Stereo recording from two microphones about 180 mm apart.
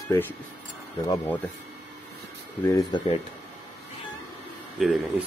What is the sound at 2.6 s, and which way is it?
Speech, 20° left (ahead or behind).